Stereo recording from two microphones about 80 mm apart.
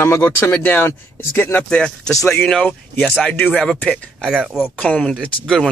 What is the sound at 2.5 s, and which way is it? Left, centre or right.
Speech, centre.